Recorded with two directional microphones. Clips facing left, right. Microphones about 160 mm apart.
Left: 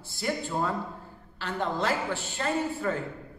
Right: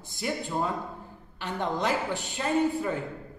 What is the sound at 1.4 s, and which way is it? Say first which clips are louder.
A woman's voice: even; 15° right (ahead or behind).